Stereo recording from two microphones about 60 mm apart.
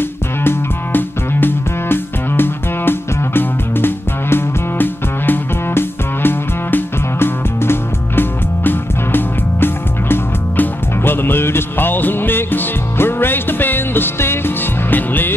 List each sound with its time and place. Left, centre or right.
0.4 s music: left